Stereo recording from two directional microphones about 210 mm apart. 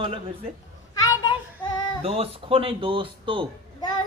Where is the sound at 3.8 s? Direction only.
20° left (ahead or behind).